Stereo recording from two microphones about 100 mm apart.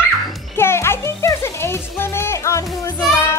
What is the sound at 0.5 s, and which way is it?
Music, 25° left (ahead or behind).